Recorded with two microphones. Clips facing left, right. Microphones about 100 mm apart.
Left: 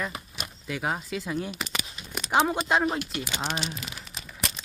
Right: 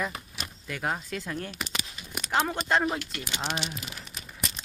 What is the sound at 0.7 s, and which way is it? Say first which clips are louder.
Speech: left 2 dB; 5° left (ahead or behind).